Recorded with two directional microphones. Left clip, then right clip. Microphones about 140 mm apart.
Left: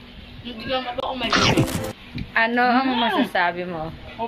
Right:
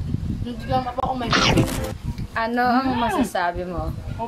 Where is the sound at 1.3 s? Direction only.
Centre (ahead or behind).